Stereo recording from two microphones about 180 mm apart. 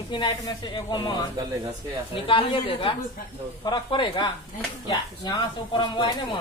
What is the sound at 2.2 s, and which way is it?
Speech, 30° left (ahead or behind).